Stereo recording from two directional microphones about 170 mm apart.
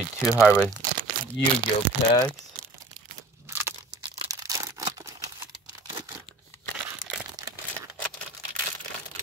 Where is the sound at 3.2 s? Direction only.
15° right (ahead or behind).